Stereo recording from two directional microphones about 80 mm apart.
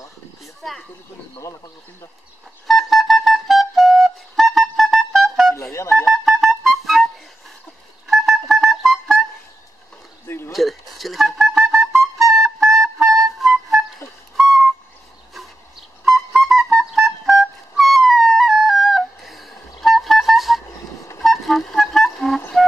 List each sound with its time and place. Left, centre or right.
0.6 s speech: centre
2.6 s flute: centre
5.6 s speech: left
6.0 s music: centre
8.1 s music: centre
10.2 s a sound: left
10.5 s music: centre
14.3 s owl: centre
16.0 s music: centre
21.2 s vehicle: centre